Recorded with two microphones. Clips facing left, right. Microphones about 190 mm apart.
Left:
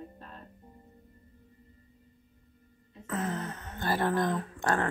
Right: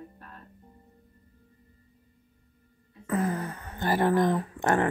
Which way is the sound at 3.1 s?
10° right (ahead or behind).